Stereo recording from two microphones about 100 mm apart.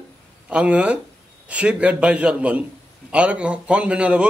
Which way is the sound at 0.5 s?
10° right (ahead or behind).